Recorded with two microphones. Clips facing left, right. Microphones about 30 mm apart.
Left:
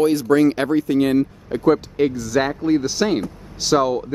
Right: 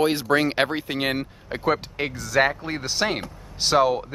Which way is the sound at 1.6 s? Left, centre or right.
Right.